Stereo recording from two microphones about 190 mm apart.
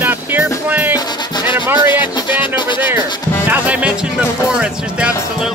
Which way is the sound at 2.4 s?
25° left (ahead or behind).